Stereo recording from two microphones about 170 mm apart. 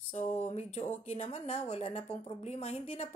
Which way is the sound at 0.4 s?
40° left (ahead or behind).